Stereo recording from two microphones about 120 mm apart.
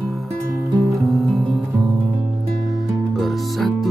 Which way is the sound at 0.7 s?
30° right (ahead or behind).